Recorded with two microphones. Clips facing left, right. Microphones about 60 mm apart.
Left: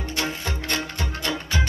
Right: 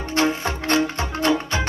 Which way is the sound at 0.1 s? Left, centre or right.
Right.